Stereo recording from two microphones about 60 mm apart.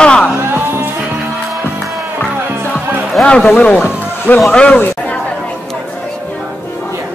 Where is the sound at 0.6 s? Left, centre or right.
Right.